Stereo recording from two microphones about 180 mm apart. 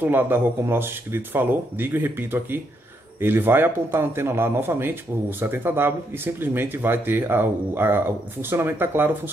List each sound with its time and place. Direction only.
0.0 s speech: 10° right (ahead or behind)